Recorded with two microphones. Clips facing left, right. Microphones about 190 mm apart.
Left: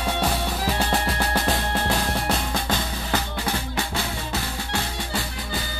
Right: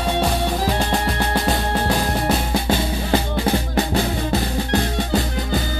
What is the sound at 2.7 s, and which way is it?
Drum, 25° right (ahead or behind).